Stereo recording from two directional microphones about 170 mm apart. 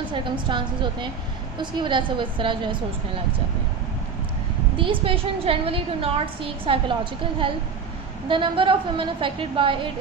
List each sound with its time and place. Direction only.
0.1 s a woman's voice: 30° right (ahead or behind)
4.7 s a woman's voice: 30° right (ahead or behind)